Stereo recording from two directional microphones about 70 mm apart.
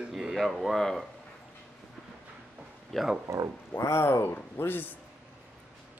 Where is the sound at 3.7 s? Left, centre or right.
Left.